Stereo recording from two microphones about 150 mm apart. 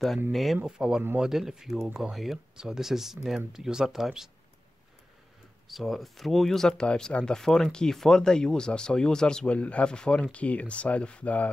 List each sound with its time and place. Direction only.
0.3 s speech: centre (ahead or behind)
5.7 s speech: centre (ahead or behind)